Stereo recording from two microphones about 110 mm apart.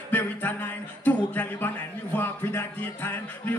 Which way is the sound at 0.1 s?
15° left (ahead or behind).